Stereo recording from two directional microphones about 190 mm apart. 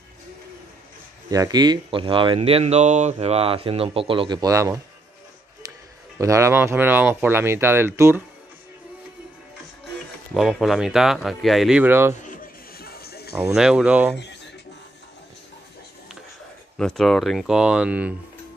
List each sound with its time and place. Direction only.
1.3 s speech: 20° right (ahead or behind)
5.6 s music: 20° right (ahead or behind)
6.1 s speech: 15° right (ahead or behind)
10.3 s speech: centre (ahead or behind)
12.2 s a sound: 50° left (ahead or behind)
13.3 s speech: 5° right (ahead or behind)
16.7 s speech: 5° left (ahead or behind)